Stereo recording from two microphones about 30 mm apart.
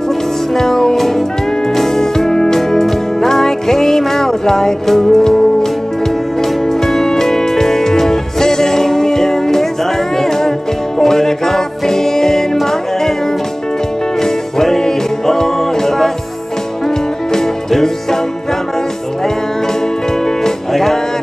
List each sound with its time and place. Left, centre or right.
0.6 s music: centre
14.2 s music: centre
17.3 s music: centre
20.7 s music: centre